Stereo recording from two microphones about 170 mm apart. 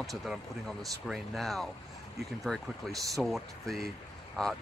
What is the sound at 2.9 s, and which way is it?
Speech, 20° right (ahead or behind).